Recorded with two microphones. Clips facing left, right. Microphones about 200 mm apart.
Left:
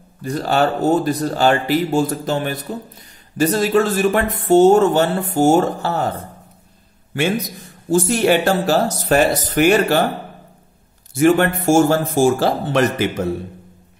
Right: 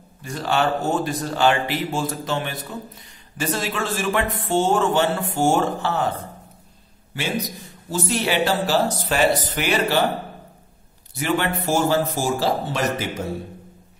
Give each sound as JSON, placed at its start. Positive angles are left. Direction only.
{"t": 0.2, "sound": "a man's voice", "side_deg": 40}
{"t": 7.9, "sound": "speech", "side_deg": 45}
{"t": 11.1, "sound": "speech", "side_deg": 50}